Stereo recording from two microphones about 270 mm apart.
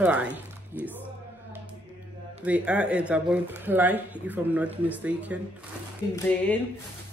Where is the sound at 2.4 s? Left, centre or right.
Centre.